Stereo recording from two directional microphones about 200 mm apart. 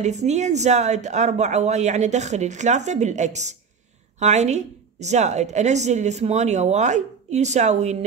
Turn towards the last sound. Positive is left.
turn(degrees=-35)  # may be behind; listen again after turning